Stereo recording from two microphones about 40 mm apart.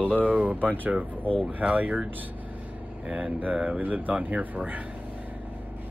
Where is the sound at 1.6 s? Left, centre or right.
Right.